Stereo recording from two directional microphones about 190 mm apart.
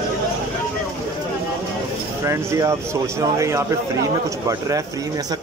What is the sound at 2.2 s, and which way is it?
A man's voice, 15° right (ahead or behind).